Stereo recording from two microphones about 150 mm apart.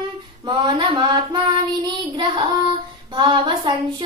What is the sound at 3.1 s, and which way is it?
Child singing, 30° right (ahead or behind).